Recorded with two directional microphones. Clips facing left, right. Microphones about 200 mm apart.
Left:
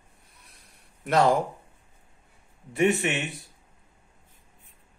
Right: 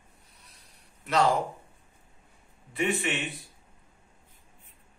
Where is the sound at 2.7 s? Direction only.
45° left (ahead or behind).